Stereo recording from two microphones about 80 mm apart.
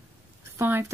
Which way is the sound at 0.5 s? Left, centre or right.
Right.